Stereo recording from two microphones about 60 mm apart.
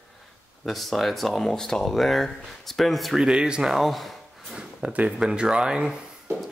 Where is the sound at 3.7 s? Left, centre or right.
Centre.